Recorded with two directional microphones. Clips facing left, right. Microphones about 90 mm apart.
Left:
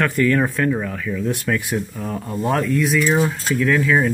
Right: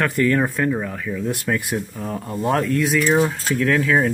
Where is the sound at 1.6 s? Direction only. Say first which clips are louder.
Left 1 dB; 15° right (ahead or behind).